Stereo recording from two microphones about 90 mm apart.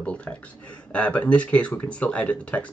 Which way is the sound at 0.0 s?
10° left (ahead or behind).